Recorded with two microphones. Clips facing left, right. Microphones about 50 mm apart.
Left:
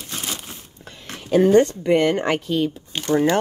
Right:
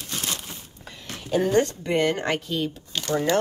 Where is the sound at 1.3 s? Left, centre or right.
Centre.